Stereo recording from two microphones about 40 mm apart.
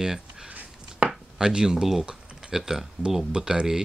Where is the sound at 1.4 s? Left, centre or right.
Centre.